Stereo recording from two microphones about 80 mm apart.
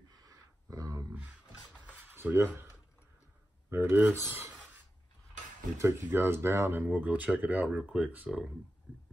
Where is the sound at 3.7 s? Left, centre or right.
Right.